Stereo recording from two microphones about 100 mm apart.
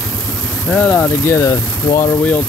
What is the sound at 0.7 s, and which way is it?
Speech, 15° left (ahead or behind).